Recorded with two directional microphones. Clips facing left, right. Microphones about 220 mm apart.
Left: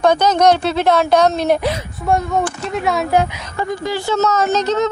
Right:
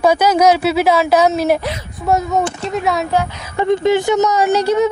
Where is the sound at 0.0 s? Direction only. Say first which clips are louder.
Right 1 dB; 10° right (ahead or behind).